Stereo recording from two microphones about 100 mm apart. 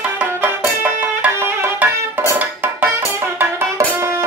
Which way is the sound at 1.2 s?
20° right (ahead or behind).